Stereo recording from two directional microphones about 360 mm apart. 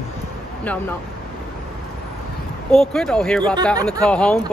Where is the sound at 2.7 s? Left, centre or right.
Centre.